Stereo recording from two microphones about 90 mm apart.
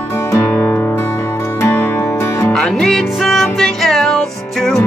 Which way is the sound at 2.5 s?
5° left (ahead or behind).